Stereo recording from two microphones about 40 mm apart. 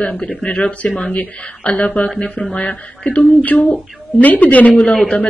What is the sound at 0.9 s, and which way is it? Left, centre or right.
Speech, centre.